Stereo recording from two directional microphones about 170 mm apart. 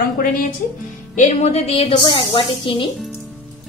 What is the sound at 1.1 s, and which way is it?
A woman's voice, 45° left (ahead or behind).